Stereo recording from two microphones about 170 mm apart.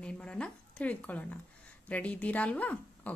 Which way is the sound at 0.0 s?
5° left (ahead or behind).